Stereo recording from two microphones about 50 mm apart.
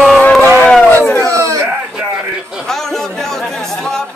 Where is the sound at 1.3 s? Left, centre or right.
Right.